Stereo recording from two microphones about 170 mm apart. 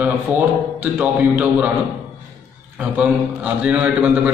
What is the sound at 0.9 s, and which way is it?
Speech, 10° right (ahead or behind).